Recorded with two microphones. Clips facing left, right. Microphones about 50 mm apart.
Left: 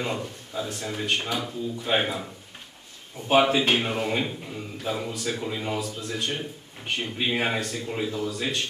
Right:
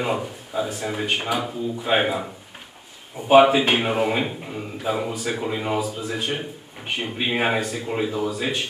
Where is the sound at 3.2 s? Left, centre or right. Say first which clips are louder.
Right 6 dB; centre.